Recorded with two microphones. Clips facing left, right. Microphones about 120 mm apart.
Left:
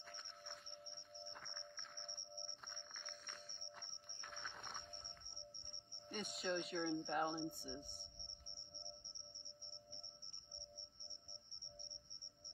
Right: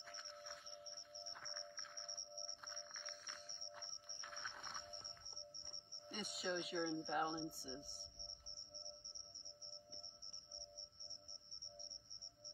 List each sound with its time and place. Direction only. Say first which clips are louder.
0.1 s music: right 2 dB; 5° right (ahead or behind)
6.0 s speech: left 1 dB; centre (ahead or behind)
8.2 s music: right 1 dB; 60° left (ahead or behind)